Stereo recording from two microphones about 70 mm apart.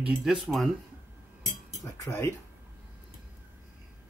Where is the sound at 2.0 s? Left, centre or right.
Left.